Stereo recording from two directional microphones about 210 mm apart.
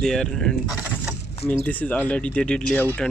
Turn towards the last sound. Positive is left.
turn(degrees=5)  # may be behind; listen again after turning